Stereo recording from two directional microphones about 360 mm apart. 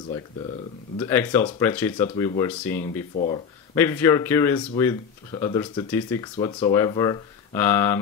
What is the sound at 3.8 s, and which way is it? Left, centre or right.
Speech, centre.